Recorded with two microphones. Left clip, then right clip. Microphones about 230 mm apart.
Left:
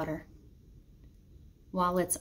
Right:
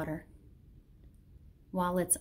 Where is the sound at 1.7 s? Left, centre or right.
Centre.